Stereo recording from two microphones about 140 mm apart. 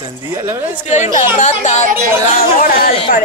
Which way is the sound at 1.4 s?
55° left (ahead or behind).